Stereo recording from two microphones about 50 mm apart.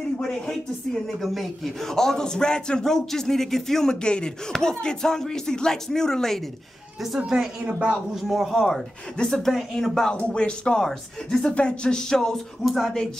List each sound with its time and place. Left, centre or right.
0.2 s a man's voice: centre
1.2 s a man's voice: centre
7.6 s speech: right
8.1 s a woman's voice: centre
10.1 s speech: left
10.8 s a man's voice: centre